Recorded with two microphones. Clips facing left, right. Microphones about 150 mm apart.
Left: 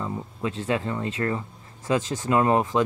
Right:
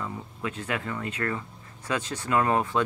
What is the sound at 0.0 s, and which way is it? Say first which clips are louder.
Speech: left 4 dB; 25° left (ahead or behind).